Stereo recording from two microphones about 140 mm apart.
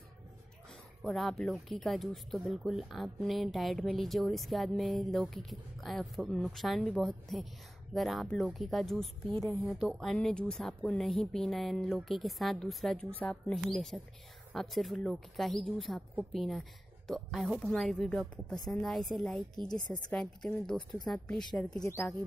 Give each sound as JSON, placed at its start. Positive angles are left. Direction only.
{"t": 1.0, "sound": "speech", "side_deg": 0}
{"t": 21.8, "sound": "speech", "side_deg": 20}